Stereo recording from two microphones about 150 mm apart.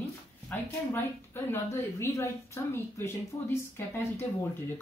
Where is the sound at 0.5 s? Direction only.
15° left (ahead or behind).